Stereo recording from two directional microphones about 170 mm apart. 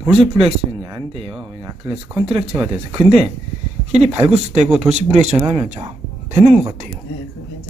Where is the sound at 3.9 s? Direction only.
40° right (ahead or behind).